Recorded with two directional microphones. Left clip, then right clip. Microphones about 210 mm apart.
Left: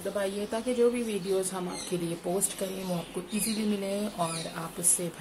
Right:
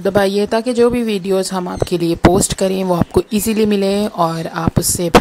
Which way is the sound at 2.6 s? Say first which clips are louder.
Right 18 dB; 45° right (ahead or behind).